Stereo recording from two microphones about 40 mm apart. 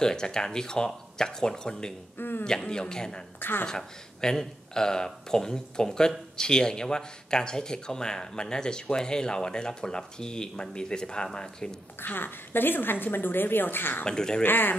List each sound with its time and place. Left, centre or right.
0.0 s speech: centre
2.1 s speech: left
2.4 s speech: centre
3.3 s speech: left
3.6 s speech: centre
12.0 s a woman's voice: left
14.0 s speech: centre
14.4 s a woman's voice: left